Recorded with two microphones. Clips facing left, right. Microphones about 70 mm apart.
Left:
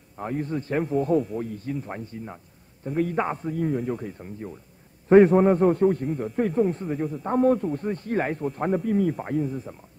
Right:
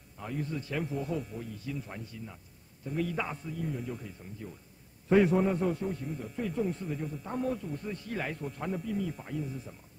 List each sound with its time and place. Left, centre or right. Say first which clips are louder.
0.2 s a man's voice: left 8 dB; left
4.2 s a man's voice: left 8 dB; left